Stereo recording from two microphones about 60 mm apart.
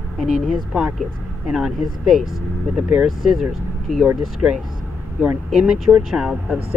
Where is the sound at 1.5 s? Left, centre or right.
Centre.